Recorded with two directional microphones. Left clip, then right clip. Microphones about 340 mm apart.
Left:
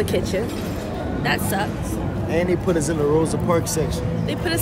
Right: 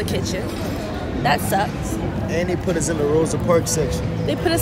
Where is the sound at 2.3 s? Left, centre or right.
Left.